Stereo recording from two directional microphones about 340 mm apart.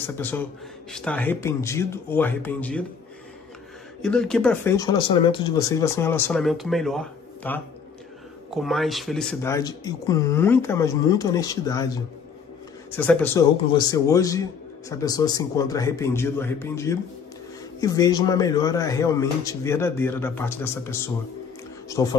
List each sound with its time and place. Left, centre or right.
0.0 s speech: centre
4.0 s speech: centre
12.9 s speech: centre